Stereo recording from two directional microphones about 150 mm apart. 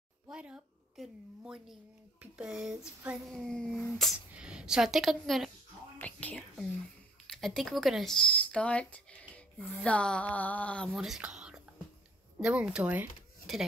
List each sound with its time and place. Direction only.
0.3 s a woman's voice: 5° right (ahead or behind)
5.9 s a woman's voice: 10° left (ahead or behind)
9.8 s a sound: 5° left (ahead or behind)
10.9 s speech: 5° right (ahead or behind)